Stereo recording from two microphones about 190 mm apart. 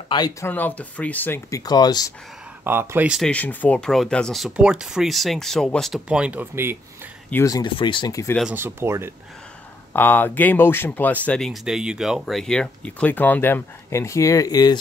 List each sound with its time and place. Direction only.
0.1 s speech: 20° left (ahead or behind)
0.5 s speech: 10° left (ahead or behind)
2.6 s speech: 10° right (ahead or behind)
3.2 s speech: 5° left (ahead or behind); by 6.8 s 10° right (ahead or behind)
7.2 s speech: 15° left (ahead or behind)
8.4 s speech: 10° right (ahead or behind)
9.9 s speech: 10° left (ahead or behind)